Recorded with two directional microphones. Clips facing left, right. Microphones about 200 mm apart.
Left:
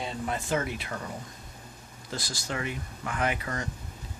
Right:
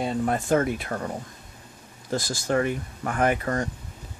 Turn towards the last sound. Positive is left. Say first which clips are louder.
# right 7 dB
turn(degrees=-45)  # may be behind; listen again after turning